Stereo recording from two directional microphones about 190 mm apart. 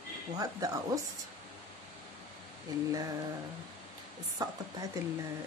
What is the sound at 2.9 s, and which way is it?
Speech, 20° right (ahead or behind).